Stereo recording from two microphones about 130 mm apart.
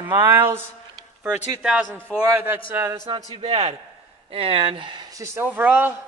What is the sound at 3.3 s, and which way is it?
A man's voice, 50° right (ahead or behind).